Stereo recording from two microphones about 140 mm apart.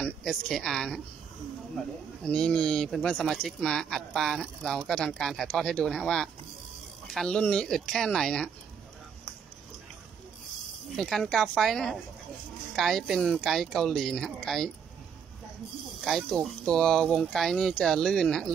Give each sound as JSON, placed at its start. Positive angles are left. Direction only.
{"t": 0.0, "sound": "a woman's voice", "side_deg": 0}
{"t": 2.2, "sound": "speech", "side_deg": 5}
{"t": 11.0, "sound": "speech", "side_deg": 5}
{"t": 16.0, "sound": "speech", "side_deg": 0}